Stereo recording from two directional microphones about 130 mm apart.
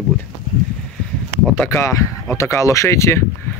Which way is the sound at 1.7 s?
20° left (ahead or behind).